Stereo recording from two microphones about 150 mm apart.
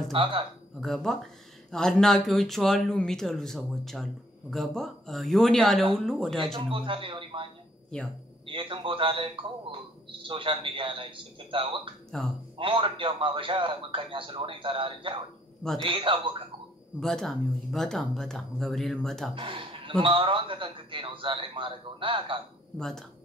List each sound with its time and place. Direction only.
0.1 s a man's voice: 35° right (ahead or behind)
0.7 s speech: centre (ahead or behind)
6.4 s a man's voice: 35° right (ahead or behind)
7.9 s speech: 5° left (ahead or behind)
8.5 s a man's voice: 35° right (ahead or behind)
12.1 s speech: 5° left (ahead or behind)
12.5 s a man's voice: 35° right (ahead or behind)
17.0 s speech: 5° left (ahead or behind)
19.3 s a man's voice: 35° right (ahead or behind)
22.8 s speech: 5° left (ahead or behind)